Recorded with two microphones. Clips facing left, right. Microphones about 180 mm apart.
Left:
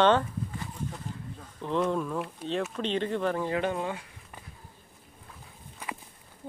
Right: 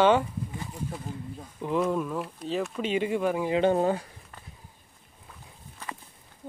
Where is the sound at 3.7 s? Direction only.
40° right (ahead or behind).